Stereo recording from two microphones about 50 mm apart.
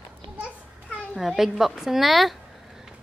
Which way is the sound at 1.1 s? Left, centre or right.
Centre.